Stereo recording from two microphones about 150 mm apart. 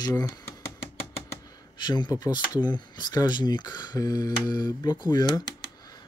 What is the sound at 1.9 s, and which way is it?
Speech, 30° left (ahead or behind).